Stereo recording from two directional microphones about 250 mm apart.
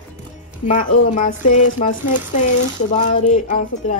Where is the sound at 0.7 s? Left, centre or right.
Left.